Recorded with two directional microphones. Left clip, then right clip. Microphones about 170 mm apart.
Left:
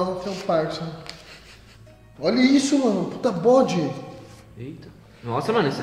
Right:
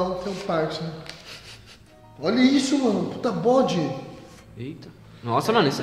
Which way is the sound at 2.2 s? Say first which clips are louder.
Left 1 dB; 20° left (ahead or behind).